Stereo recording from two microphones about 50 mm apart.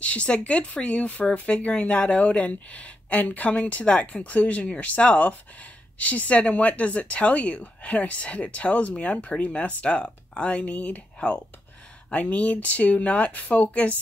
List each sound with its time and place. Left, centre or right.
0.0 s speech: left
12.1 s speech: left